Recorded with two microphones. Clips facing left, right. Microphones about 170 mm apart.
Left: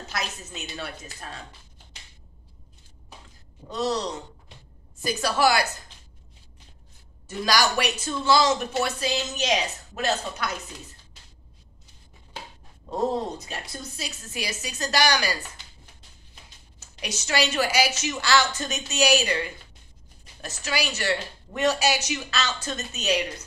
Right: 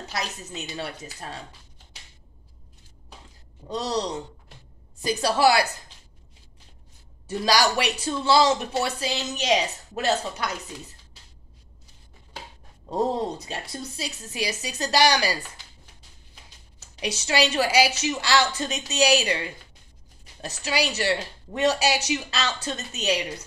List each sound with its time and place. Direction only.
0.5 s speech: 30° right (ahead or behind)
3.6 s speech: 35° right (ahead or behind)
7.2 s speech: 30° right (ahead or behind)
12.9 s speech: 35° right (ahead or behind)
17.0 s speech: 30° right (ahead or behind)
20.4 s speech: 30° right (ahead or behind)